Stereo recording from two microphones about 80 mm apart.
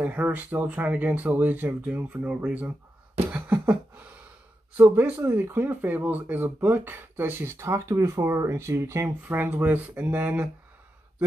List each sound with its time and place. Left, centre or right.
0.0 s speech: right
3.3 s beatboxing: right
4.7 s speech: right
9.3 s speech: right